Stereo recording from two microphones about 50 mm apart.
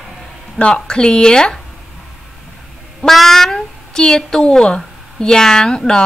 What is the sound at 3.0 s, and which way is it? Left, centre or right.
A woman's voice, centre.